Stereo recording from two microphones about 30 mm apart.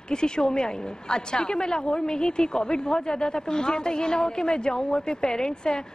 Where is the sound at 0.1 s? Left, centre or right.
Left.